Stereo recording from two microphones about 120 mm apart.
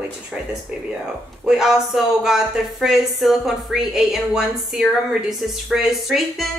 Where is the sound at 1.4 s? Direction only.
5° right (ahead or behind).